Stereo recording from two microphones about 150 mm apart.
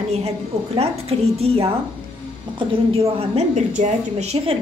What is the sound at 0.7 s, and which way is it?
Speech, 40° right (ahead or behind).